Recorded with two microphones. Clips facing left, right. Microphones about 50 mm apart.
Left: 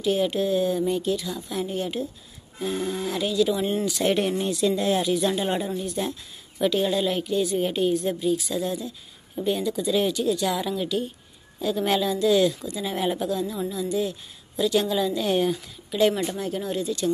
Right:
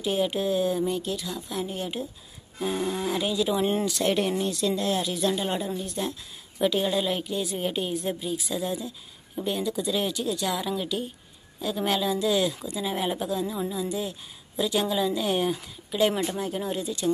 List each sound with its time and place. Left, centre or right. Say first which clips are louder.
0.0 s a woman's voice: left 3 dB; centre
2.6 s speech: even; centre
3.8 s a woman's voice: left 2 dB; centre